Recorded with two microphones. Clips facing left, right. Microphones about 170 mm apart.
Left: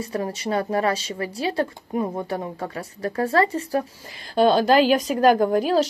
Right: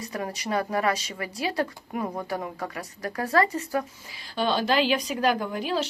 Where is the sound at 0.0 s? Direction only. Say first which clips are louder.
Left 5 dB; 30° left (ahead or behind).